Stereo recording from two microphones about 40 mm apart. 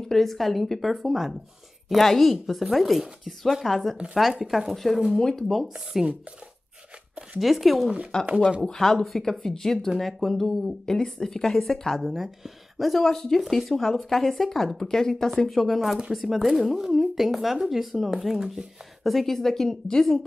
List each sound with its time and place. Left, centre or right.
0.1 s speech: centre
7.3 s speech: centre
8.1 s speech: centre
12.0 s speech: centre
13.1 s speech: centre
13.4 s speech: centre